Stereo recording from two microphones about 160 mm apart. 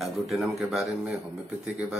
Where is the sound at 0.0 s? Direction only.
Centre (ahead or behind).